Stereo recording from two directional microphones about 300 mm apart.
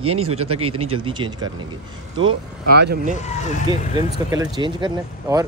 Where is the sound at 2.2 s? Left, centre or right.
Right.